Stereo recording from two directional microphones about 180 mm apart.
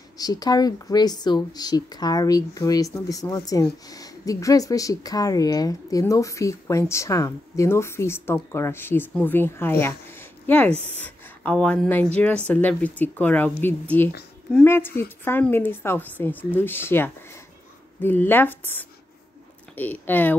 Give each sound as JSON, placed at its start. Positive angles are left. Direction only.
{"t": 0.2, "sound": "speech", "side_deg": 20}